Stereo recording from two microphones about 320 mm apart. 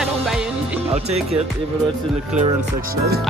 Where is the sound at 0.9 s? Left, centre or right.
Centre.